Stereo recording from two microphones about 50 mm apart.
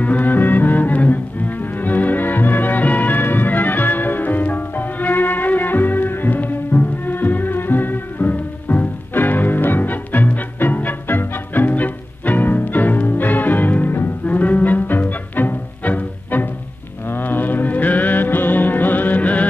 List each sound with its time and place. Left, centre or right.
0.0 s music: left